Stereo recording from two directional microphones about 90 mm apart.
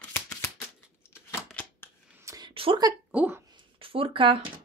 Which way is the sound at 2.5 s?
90° right.